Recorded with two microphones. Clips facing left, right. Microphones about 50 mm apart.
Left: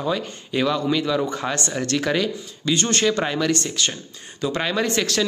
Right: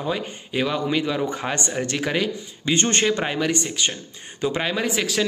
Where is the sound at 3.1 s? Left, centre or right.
Centre.